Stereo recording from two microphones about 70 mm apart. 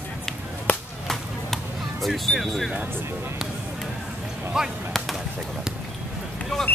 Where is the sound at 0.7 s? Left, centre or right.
Centre.